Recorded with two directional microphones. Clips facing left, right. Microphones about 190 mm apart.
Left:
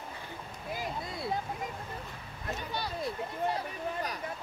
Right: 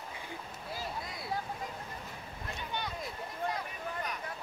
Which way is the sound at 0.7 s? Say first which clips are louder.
Left 4 dB; 20° left (ahead or behind).